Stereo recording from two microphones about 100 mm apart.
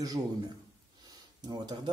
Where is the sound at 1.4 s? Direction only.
45° right (ahead or behind).